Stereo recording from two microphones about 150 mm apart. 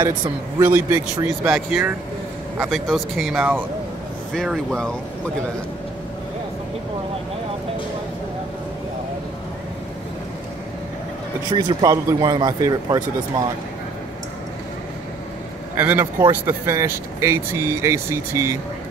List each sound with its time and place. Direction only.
0.6 s speech: 15° right (ahead or behind); by 4.9 s centre (ahead or behind)
11.5 s speech: 25° right (ahead or behind)
15.7 s speech: 15° right (ahead or behind)